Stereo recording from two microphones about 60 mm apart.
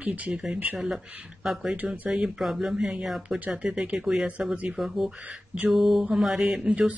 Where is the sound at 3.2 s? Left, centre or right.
Right.